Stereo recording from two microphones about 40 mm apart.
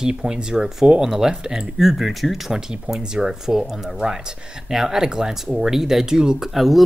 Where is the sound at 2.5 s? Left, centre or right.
Centre.